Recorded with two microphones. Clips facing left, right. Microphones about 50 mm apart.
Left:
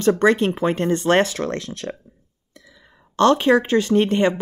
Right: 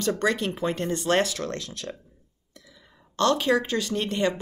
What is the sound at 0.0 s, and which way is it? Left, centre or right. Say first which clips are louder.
Speech: left 8 dB; left.